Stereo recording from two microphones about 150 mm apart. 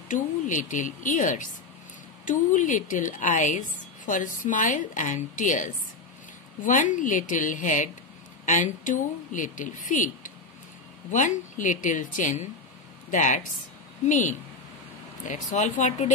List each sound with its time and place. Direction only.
0.1 s a woman's voice: 60° left (ahead or behind)